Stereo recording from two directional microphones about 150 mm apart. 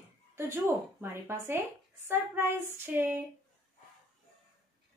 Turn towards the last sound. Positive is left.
turn(degrees=-15)  # may be behind; listen again after turning